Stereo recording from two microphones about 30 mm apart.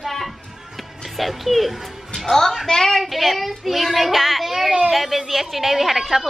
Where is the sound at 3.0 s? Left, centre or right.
Centre.